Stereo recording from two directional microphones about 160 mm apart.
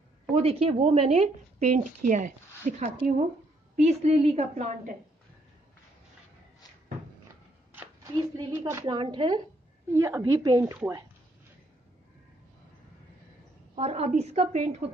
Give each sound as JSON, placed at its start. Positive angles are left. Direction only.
{"t": 0.4, "sound": "a woman's voice", "side_deg": -40}
{"t": 8.1, "sound": "speech", "side_deg": -30}
{"t": 8.5, "sound": "a woman's voice", "side_deg": -15}
{"t": 8.8, "sound": "a woman's voice", "side_deg": -30}
{"t": 9.9, "sound": "speech", "side_deg": -20}
{"t": 13.7, "sound": "a woman's voice", "side_deg": -40}